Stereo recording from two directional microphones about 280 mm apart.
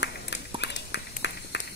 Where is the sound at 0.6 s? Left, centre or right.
Left.